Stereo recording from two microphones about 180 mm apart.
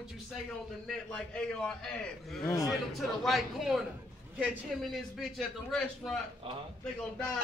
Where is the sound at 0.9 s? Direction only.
5° left (ahead or behind).